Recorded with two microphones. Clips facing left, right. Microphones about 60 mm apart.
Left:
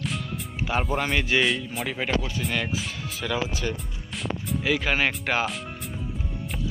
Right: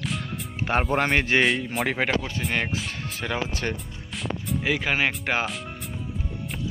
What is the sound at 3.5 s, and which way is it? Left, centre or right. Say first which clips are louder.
Speech: right 1 dB; right.